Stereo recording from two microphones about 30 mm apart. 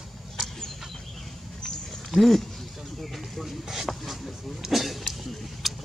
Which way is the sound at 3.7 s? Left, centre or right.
Centre.